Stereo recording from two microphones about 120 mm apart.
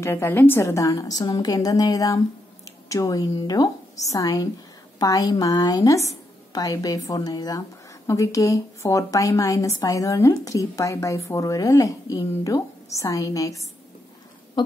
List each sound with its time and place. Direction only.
0.0 s a woman's voice: 20° left (ahead or behind)